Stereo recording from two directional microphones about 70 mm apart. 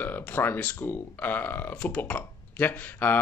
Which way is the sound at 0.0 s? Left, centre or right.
Left.